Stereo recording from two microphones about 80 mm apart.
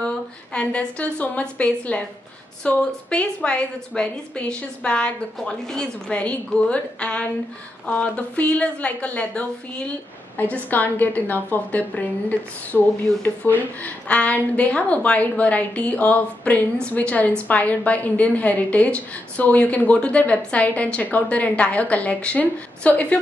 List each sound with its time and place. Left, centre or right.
0.0 s a woman's voice: centre